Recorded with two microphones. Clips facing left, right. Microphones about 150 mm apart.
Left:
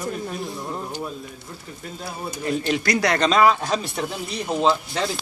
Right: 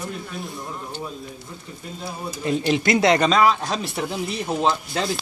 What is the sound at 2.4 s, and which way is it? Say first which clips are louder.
Speech: right 2 dB; 20° right (ahead or behind).